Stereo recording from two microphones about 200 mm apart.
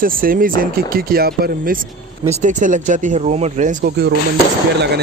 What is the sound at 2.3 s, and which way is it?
Speech, 40° right (ahead or behind).